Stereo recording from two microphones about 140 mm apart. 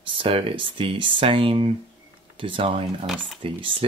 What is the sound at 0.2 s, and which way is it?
Speech, 40° right (ahead or behind).